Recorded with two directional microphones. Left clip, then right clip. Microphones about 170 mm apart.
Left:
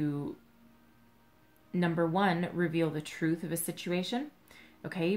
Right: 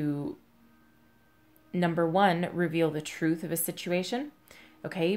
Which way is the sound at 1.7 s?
45° right (ahead or behind).